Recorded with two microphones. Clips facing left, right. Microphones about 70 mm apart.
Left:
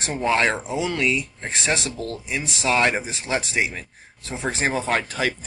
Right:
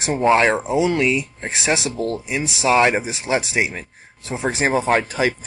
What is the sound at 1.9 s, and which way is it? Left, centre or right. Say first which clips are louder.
Speech: right 7 dB; right.